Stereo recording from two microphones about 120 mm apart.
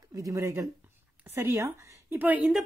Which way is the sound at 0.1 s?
25° right (ahead or behind).